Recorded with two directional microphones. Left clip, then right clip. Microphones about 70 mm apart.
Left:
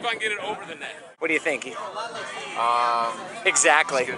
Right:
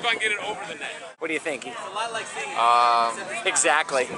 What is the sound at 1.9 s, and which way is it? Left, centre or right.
Speech, right.